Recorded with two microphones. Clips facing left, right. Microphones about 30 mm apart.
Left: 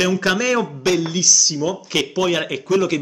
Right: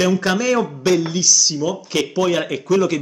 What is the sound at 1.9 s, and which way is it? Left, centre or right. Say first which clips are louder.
A man's voice: right 1 dB; centre.